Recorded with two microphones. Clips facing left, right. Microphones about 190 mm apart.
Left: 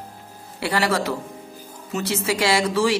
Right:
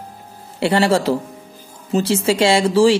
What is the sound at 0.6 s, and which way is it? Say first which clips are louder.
A woman's voice: right 6 dB; 25° right (ahead or behind).